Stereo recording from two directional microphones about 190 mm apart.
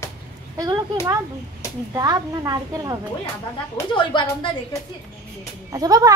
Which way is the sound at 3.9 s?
25° left (ahead or behind).